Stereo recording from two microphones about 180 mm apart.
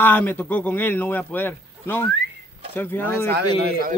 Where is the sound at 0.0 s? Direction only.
10° left (ahead or behind).